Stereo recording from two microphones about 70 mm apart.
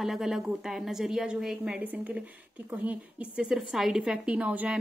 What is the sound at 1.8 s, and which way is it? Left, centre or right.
A woman's voice, right.